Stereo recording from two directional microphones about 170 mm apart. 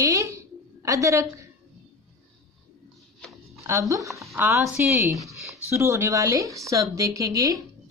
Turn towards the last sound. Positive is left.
turn(degrees=-20)  # may be behind; listen again after turning